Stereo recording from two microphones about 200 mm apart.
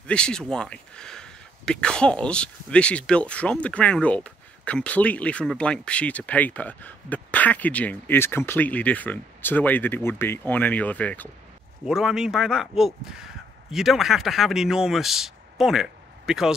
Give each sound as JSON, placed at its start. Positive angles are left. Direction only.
{"t": 0.0, "sound": "speech", "side_deg": 5}